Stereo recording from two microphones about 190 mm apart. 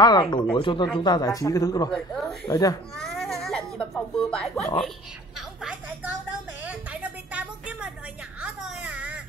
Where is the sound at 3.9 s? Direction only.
5° left (ahead or behind).